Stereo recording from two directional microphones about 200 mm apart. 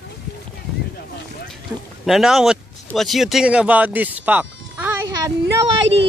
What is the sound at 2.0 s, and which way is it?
Speech, centre (ahead or behind).